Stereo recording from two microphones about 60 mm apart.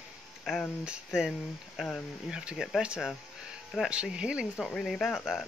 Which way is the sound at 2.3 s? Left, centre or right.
Centre.